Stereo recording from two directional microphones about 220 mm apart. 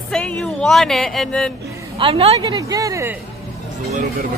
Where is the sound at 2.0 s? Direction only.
25° right (ahead or behind).